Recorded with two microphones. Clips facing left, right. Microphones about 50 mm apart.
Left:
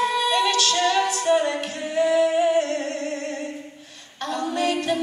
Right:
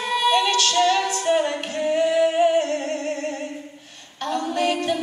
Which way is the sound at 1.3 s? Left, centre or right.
Centre.